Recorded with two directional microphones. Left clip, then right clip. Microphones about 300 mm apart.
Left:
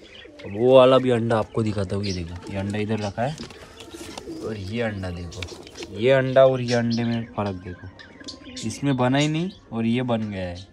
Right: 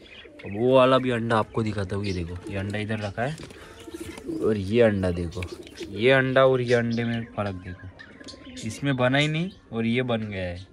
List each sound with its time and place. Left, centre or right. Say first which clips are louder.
0.4 s speech: left 3 dB; left
0.7 s speech: left 4 dB; centre
4.5 s speech: right 8 dB; centre
5.9 s speech: left 3 dB; centre
8.8 s speech: left 1 dB; centre